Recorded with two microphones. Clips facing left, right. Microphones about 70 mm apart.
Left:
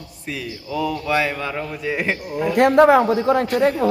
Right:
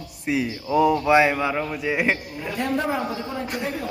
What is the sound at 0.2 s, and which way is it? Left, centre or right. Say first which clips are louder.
A man's voice: right 6 dB; centre.